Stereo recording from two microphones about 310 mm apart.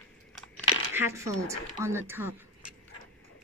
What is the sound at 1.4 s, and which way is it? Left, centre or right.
Speech, centre.